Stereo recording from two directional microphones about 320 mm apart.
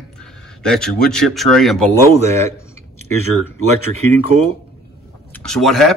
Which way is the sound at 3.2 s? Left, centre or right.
Left.